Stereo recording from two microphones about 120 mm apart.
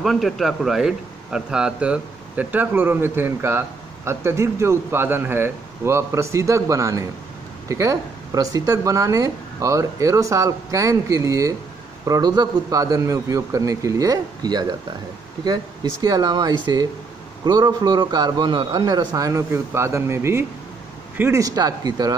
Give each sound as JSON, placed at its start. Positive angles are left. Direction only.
{"t": 0.0, "sound": "a man's voice", "side_deg": 0}